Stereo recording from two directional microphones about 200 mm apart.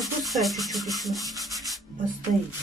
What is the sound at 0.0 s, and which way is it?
Sanding, centre (ahead or behind).